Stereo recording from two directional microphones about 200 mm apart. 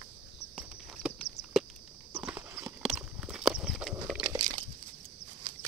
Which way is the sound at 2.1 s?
10° right (ahead or behind).